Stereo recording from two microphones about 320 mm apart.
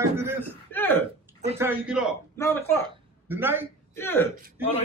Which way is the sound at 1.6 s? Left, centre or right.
Centre.